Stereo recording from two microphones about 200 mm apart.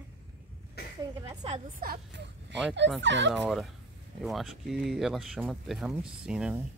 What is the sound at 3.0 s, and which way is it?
Speech, 65° right (ahead or behind).